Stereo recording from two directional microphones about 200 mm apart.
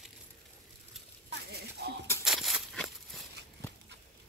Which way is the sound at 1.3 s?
55° right (ahead or behind).